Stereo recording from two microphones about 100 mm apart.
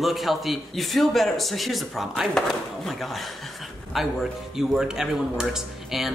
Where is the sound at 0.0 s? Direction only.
Centre (ahead or behind).